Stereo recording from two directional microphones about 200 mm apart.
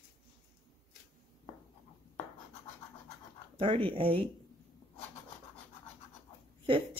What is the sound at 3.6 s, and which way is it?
Speech, 25° right (ahead or behind).